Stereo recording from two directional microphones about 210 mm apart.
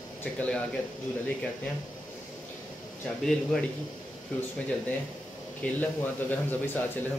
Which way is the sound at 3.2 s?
5° left (ahead or behind).